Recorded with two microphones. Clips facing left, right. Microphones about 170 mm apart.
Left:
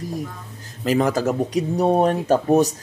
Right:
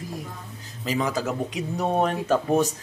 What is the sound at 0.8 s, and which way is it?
Speech, 50° left (ahead or behind).